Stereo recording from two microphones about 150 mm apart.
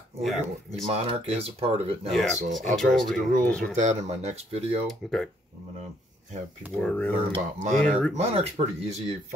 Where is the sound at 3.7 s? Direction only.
50° right (ahead or behind).